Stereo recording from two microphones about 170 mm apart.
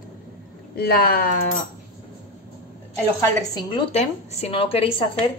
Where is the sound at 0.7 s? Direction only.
60° left (ahead or behind).